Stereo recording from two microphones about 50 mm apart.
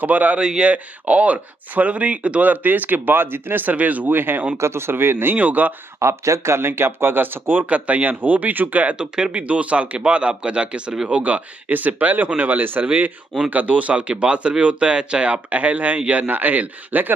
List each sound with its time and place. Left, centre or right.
0.0 s speech: right
0.4 s speech: centre; by 3.7 s right
3.7 s speech: right
4.6 s speech: right
5.4 s speech: right
5.9 s speech: right
7.7 s speech: right
8.9 s speech: centre
9.5 s speech: right